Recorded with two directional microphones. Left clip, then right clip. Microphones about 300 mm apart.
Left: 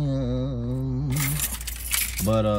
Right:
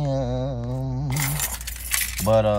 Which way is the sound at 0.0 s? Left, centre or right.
Right.